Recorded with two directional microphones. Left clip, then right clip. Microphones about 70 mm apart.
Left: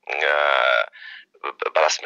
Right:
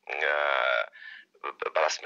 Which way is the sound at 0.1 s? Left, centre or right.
Left.